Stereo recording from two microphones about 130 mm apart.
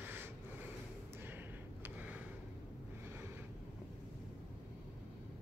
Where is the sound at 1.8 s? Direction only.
10° right (ahead or behind).